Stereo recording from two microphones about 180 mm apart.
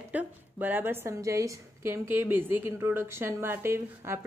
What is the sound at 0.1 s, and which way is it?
Speech, 10° right (ahead or behind).